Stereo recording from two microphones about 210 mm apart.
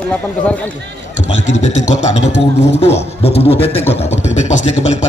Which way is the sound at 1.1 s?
35° left (ahead or behind).